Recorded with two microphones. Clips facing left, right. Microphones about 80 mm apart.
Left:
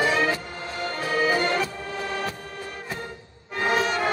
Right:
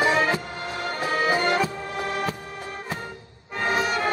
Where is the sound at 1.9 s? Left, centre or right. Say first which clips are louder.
Right 2 dB; right.